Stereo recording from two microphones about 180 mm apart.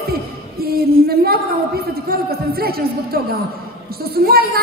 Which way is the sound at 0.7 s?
60° right (ahead or behind).